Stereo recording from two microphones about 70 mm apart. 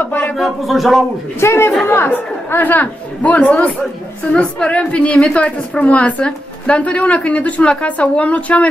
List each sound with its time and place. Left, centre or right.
0.0 s a sound: left
0.4 s speech: centre
1.4 s a man's voice: left